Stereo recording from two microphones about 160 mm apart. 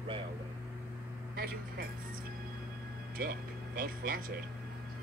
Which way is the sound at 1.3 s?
75° right (ahead or behind).